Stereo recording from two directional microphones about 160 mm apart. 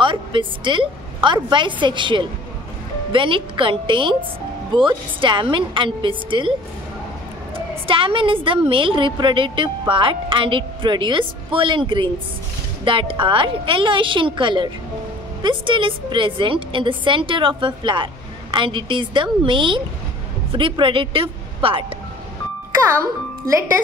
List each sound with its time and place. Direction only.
0.0 s a woman's voice: 30° right (ahead or behind)
7.5 s a woman's voice: 35° right (ahead or behind)